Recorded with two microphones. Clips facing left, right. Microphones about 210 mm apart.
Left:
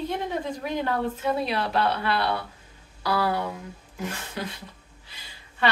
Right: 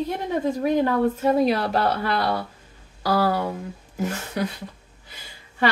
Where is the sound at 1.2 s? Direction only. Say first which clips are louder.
Right 7 dB; 45° right (ahead or behind).